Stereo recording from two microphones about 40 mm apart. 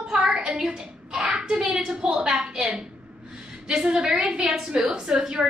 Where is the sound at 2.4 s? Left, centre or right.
Right.